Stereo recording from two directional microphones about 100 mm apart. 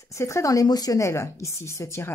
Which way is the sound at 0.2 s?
30° left (ahead or behind).